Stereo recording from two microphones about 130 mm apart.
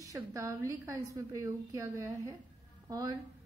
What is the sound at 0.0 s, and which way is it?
A woman's voice, 25° right (ahead or behind).